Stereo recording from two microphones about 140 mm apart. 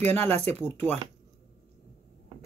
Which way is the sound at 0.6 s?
15° left (ahead or behind).